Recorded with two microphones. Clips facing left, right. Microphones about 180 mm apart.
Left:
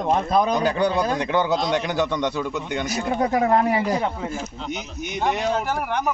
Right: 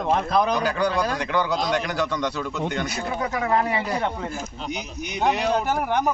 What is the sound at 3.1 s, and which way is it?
Speech, 35° left (ahead or behind).